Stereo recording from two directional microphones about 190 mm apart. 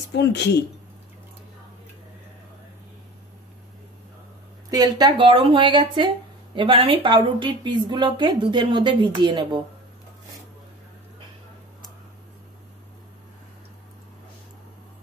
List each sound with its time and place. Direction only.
0.1 s speech: 65° left (ahead or behind)
4.6 s speech: 20° right (ahead or behind)